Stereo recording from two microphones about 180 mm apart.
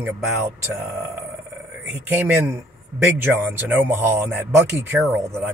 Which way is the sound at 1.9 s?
10° right (ahead or behind).